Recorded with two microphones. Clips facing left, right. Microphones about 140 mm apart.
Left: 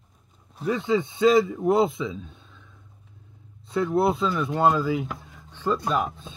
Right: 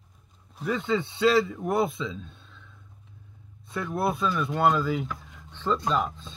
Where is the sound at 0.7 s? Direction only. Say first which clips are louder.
Left 3 dB; 15° left (ahead or behind).